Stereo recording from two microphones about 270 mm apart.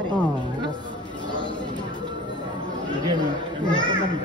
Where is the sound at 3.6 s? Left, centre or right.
Centre.